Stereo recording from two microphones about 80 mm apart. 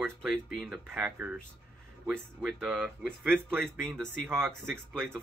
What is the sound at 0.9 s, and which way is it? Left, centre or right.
Speech, right.